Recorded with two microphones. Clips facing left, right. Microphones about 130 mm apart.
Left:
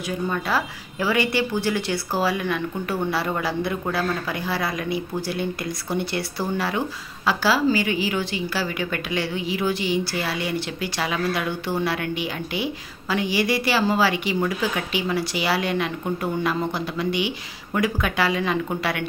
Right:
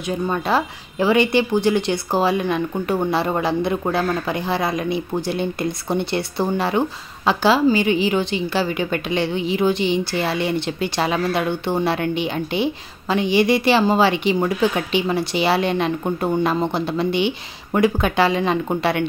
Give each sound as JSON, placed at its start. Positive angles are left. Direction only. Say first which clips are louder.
{"t": 0.1, "sound": "a woman's voice", "louder": "right 4 dB", "side_deg": -25}